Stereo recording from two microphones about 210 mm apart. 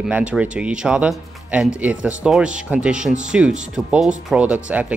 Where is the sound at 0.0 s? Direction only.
5° right (ahead or behind).